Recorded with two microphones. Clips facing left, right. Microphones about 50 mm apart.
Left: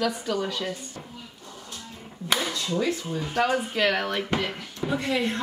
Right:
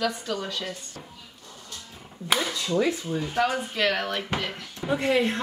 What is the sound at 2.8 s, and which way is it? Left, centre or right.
Speech, centre.